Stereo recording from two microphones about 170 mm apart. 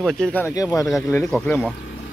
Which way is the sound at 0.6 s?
20° left (ahead or behind).